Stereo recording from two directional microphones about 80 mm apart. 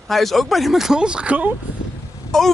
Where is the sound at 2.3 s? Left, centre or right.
Centre.